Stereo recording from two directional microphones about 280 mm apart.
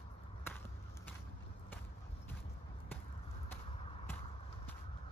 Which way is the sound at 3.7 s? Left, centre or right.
Centre.